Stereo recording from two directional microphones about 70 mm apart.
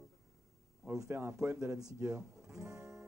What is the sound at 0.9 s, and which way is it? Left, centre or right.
Speech, right.